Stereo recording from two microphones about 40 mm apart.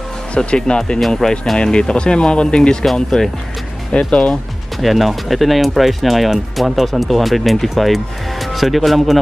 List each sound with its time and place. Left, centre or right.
0.4 s speech: left
2.8 s speech: centre
3.9 s speech: left
4.7 s speech: centre